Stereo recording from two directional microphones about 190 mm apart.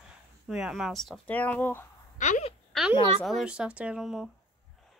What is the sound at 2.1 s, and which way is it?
Speech, 40° left (ahead or behind).